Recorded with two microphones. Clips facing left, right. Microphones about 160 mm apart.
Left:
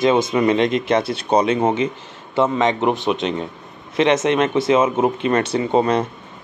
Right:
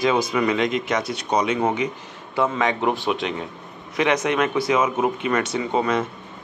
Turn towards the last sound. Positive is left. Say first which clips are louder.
# left 4 dB
turn(degrees=35)  # may be behind; listen again after turning